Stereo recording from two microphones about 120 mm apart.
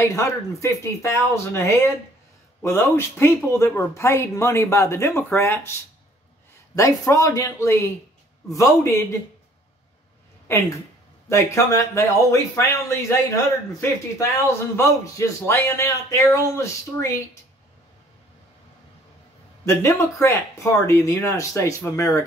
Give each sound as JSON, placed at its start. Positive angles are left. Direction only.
{"t": 0.1, "sound": "speech", "side_deg": 25}
{"t": 11.2, "sound": "speech", "side_deg": 25}
{"t": 19.6, "sound": "speech", "side_deg": 25}